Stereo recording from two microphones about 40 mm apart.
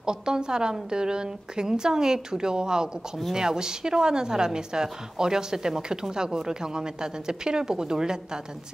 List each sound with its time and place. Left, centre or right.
0.0 s a woman's voice: centre